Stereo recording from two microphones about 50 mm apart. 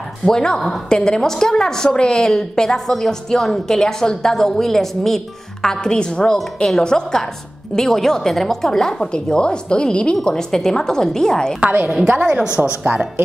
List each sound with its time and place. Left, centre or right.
0.2 s a woman's voice: centre
12.1 s a woman's voice: centre